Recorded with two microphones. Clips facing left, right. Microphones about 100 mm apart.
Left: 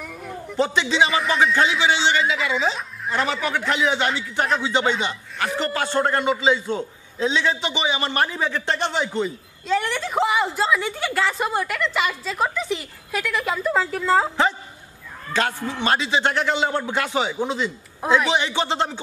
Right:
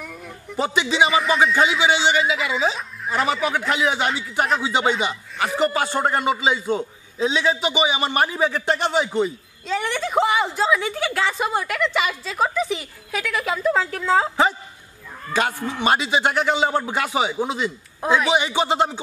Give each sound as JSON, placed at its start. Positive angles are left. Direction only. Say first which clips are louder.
{"t": 0.0, "sound": "a sound", "louder": "left 3 dB", "side_deg": 0}
{"t": 0.6, "sound": "a man's voice", "louder": "even", "side_deg": -10}
{"t": 15.3, "sound": "a man's voice", "louder": "right 1 dB", "side_deg": -15}